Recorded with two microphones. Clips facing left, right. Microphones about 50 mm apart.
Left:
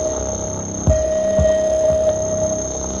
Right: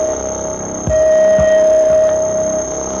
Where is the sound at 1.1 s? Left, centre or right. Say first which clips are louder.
Right 8 dB; right.